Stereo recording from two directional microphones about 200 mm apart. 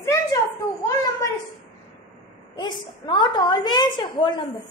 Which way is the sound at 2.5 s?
20° left (ahead or behind).